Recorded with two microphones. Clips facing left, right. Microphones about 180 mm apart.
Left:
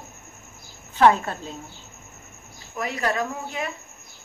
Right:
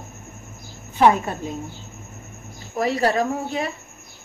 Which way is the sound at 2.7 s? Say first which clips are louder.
Right 6 dB; 35° right (ahead or behind).